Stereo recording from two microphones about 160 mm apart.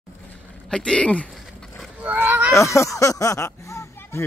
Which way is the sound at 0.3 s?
5° left (ahead or behind).